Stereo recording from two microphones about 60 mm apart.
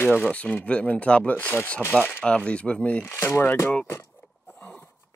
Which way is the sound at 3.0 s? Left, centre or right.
Left.